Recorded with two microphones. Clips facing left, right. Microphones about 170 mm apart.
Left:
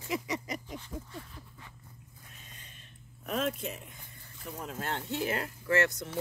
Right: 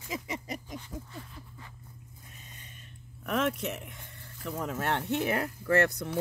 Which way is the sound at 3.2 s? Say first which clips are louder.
Right 3 dB; 75° right (ahead or behind).